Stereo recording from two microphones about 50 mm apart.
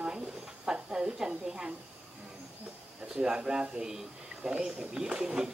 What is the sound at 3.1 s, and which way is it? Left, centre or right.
Speech, centre.